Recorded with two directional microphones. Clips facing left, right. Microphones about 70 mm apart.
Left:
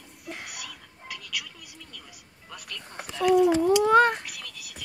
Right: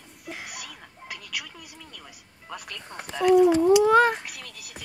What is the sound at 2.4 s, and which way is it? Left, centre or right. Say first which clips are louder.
Speech: right 3 dB; right.